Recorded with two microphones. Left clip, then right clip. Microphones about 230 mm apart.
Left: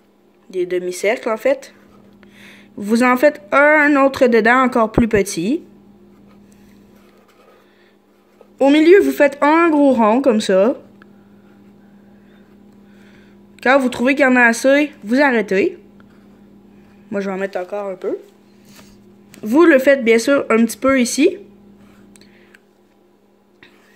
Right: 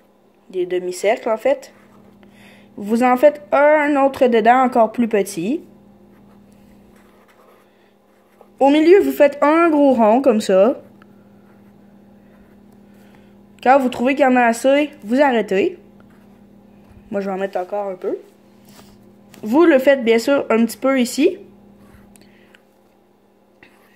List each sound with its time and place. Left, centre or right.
0.6 s a woman's voice: centre
8.5 s a woman's voice: centre
13.6 s a woman's voice: centre
17.1 s a woman's voice: centre
19.3 s a woman's voice: centre